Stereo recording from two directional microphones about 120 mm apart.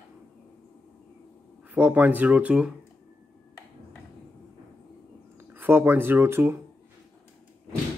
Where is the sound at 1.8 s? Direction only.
15° right (ahead or behind).